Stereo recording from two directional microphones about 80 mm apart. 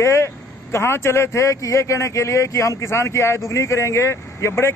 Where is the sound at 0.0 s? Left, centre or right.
Left.